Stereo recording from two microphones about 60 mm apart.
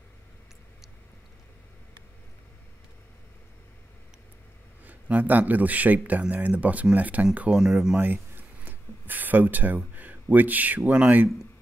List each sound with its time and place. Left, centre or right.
4.8 s a man's voice: right
7.5 s speech: centre
8.0 s a sound: right
9.9 s speech: right